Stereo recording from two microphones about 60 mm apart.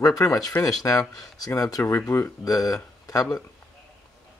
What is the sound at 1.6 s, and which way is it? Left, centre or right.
Speech, left.